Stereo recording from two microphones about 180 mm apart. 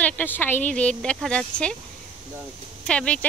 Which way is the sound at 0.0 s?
10° left (ahead or behind).